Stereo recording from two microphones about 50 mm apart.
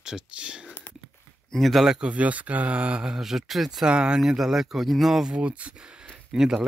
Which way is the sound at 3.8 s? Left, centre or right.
Centre.